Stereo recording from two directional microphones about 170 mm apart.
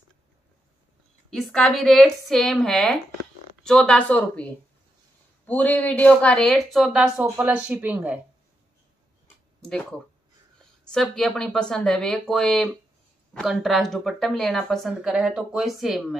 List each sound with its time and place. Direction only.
1.3 s a woman's voice: centre (ahead or behind)
5.5 s a woman's voice: 10° left (ahead or behind); by 8.2 s 10° right (ahead or behind)
9.6 s speech: 5° left (ahead or behind)
10.9 s a woman's voice: 5° left (ahead or behind)